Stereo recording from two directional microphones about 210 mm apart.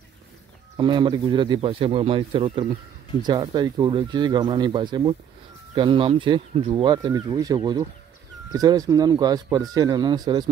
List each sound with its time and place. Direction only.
0.7 s speech: 20° right (ahead or behind)